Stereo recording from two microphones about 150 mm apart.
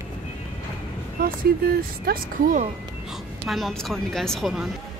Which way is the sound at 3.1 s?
Centre (ahead or behind).